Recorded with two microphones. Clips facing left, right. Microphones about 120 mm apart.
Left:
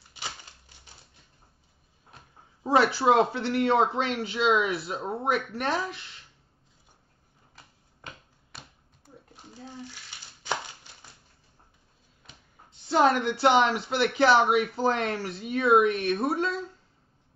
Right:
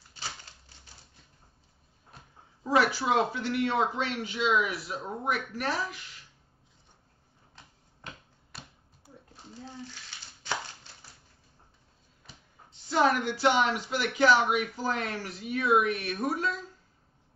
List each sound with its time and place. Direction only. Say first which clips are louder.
0.1 s typewriter: left 2 dB; 15° left (ahead or behind)
2.6 s speech: left 4 dB; 30° left (ahead or behind)
8.5 s finger snapping: even; centre (ahead or behind)
10.4 s a sound: left 3 dB; 15° left (ahead or behind)
12.9 s speech: left 3 dB; 30° left (ahead or behind)